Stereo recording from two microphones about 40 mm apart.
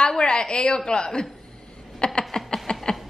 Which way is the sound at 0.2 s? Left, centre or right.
Left.